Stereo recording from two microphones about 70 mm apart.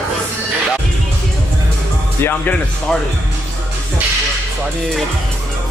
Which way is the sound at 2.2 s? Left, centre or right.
Left.